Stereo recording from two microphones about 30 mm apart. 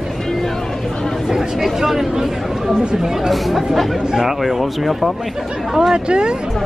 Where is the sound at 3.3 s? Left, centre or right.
Centre.